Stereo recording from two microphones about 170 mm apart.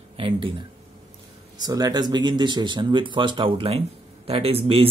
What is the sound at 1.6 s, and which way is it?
Speech, 25° right (ahead or behind).